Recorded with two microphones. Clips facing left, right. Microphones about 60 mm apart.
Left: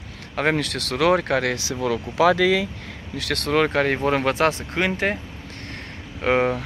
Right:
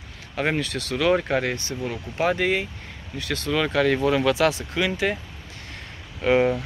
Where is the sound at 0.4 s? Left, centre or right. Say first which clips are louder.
Left 3 dB; left.